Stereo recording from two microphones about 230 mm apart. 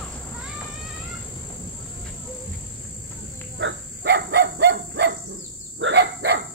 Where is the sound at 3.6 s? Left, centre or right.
Right.